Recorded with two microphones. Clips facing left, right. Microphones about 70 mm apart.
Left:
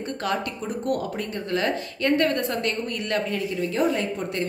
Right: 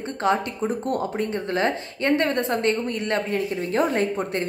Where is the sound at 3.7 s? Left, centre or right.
Right.